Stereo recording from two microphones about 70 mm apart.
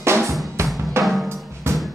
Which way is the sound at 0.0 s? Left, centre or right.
Right.